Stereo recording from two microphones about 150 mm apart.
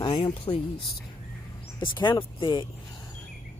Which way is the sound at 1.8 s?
30° left (ahead or behind).